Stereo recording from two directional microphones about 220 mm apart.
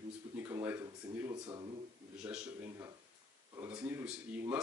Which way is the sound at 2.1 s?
5° right (ahead or behind).